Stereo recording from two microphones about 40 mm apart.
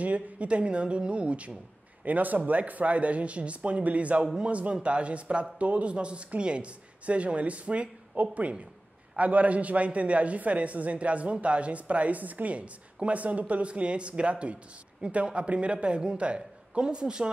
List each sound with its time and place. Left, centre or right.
0.0 s speech: right
2.0 s speech: right